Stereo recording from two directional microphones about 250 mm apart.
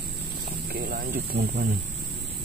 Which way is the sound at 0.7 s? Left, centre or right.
Right.